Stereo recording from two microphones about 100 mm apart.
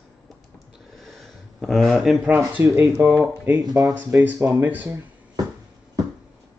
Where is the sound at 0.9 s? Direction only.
Centre (ahead or behind).